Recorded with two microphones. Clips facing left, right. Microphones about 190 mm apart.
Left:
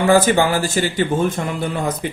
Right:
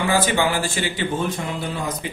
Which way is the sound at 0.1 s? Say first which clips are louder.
Left 7 dB; 45° left (ahead or behind).